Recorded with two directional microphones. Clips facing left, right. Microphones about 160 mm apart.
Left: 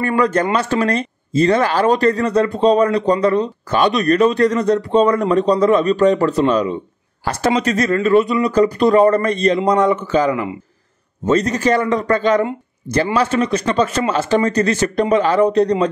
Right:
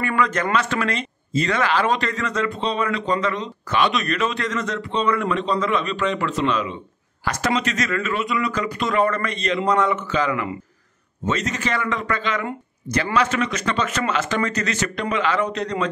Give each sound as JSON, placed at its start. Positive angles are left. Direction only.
{"t": 0.0, "sound": "speech", "side_deg": 35}
{"t": 7.2, "sound": "speech", "side_deg": 30}